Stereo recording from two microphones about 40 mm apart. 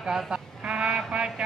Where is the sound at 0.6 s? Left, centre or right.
Right.